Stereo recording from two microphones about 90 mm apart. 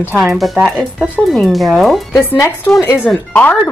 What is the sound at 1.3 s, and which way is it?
Speech, centre (ahead or behind).